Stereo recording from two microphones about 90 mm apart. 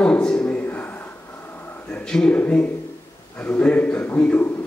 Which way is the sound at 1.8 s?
10° left (ahead or behind).